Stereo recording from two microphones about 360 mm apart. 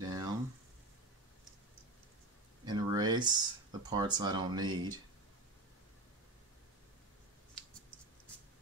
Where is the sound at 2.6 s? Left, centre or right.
Centre.